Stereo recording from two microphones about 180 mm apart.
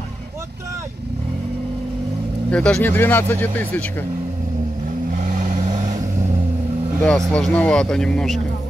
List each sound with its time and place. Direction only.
2.5 s speech: 5° left (ahead or behind)
5.2 s vehicle: 45° right (ahead or behind)
7.0 s speech: 5° left (ahead or behind)